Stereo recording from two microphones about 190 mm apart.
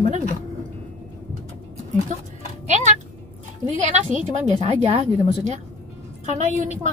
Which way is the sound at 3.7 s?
40° right (ahead or behind).